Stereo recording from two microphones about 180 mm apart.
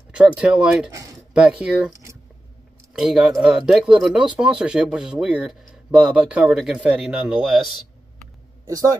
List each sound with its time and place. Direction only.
0.1 s speech: 5° right (ahead or behind)
1.9 s a sound: 15° right (ahead or behind)
2.9 s speech: centre (ahead or behind)
8.6 s a man's voice: 20° right (ahead or behind)